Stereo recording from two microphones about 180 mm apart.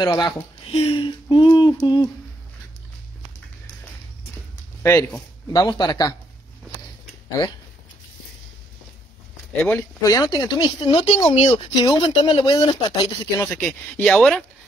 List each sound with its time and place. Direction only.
0.0 s speech: 20° left (ahead or behind)
0.7 s speech: 30° left (ahead or behind)
4.8 s speech: 15° left (ahead or behind)
9.6 s speech: 5° left (ahead or behind)
10.0 s speech: 20° left (ahead or behind)
11.8 s speech: 25° left (ahead or behind)
13.5 s speech: 10° left (ahead or behind)